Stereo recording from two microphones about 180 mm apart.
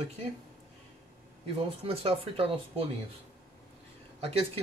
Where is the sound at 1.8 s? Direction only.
35° right (ahead or behind).